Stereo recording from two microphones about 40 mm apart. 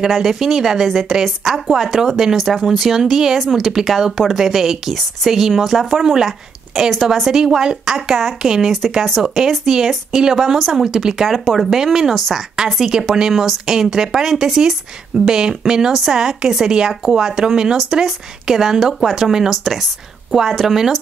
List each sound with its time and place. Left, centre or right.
0.0 s speech: centre
2.3 s a woman's voice: centre
11.2 s speech: centre